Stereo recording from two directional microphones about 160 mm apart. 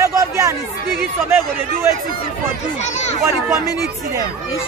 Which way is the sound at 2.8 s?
45° left (ahead or behind).